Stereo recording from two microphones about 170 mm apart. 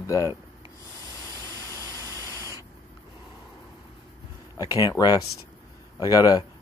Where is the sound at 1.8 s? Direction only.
20° right (ahead or behind).